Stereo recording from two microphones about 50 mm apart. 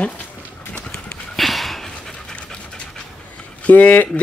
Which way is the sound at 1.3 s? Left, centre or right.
Centre.